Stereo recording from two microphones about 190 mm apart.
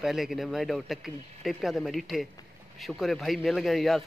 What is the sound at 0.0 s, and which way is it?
A man's voice, centre (ahead or behind).